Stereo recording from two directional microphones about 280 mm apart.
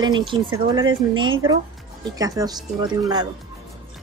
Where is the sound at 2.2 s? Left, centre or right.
Centre.